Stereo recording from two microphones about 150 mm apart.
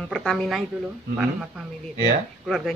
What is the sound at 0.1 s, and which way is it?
Speech, 5° left (ahead or behind).